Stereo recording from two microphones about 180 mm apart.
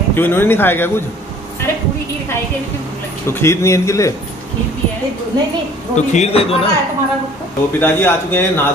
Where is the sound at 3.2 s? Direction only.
15° left (ahead or behind).